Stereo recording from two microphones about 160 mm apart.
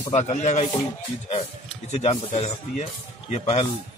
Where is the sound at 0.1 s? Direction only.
45° left (ahead or behind).